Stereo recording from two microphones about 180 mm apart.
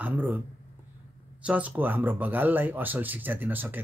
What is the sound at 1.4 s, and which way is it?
Speech, 10° right (ahead or behind).